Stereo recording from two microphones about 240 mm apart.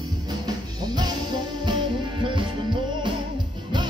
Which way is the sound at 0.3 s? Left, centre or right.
Centre.